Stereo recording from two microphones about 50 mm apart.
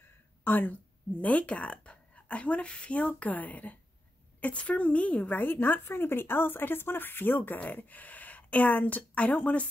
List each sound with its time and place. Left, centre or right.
0.4 s a woman's voice: left